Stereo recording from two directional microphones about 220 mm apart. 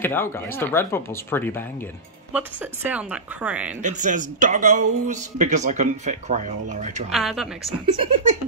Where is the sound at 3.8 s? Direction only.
35° right (ahead or behind).